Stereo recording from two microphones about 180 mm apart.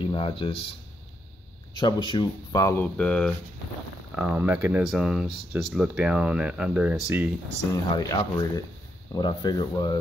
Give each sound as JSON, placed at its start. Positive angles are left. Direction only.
{"t": 0.0, "sound": "speech", "side_deg": 30}
{"t": 1.8, "sound": "speech", "side_deg": 25}
{"t": 4.1, "sound": "speech", "side_deg": -10}
{"t": 7.7, "sound": "speech", "side_deg": 20}